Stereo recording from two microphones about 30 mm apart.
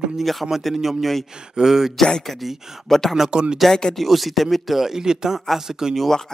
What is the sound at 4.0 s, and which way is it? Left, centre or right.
Speech, centre.